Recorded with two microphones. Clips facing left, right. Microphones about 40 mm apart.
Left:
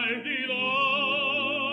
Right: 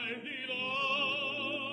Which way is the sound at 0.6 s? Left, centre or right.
Left.